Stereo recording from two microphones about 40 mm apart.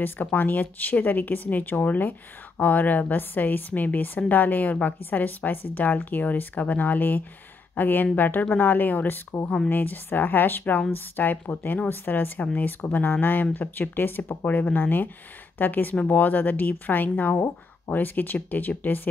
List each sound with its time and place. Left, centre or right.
0.0 s speech: left
14.4 s speech: left